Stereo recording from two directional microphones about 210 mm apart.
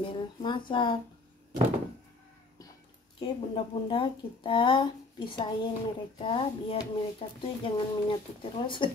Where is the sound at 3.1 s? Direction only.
25° left (ahead or behind).